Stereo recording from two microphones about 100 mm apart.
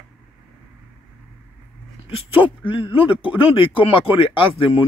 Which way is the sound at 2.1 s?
65° left (ahead or behind).